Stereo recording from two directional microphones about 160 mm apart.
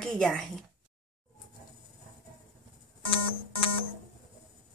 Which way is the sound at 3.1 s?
35° left (ahead or behind).